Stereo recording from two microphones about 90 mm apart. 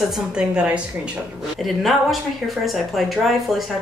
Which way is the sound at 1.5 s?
Centre (ahead or behind).